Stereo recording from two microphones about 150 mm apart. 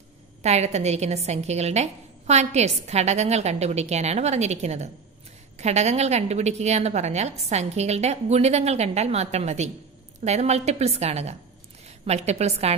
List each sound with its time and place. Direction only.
0.4 s a woman's voice: 45° right (ahead or behind)